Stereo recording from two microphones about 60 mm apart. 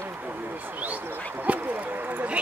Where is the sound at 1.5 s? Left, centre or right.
Right.